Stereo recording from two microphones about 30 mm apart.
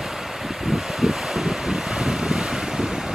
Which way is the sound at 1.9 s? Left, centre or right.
Right.